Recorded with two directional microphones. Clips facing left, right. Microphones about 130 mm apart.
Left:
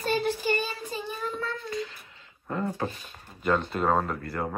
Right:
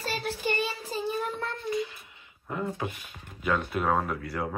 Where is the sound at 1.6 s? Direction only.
20° right (ahead or behind).